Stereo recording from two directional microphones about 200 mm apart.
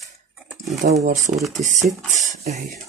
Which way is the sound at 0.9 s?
35° right (ahead or behind).